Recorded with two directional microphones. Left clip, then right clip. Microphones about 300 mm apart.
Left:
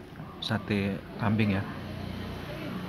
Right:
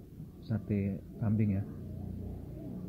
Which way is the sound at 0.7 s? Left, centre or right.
Left.